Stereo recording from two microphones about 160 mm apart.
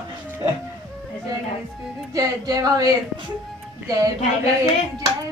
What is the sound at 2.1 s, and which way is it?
Speech, 25° right (ahead or behind).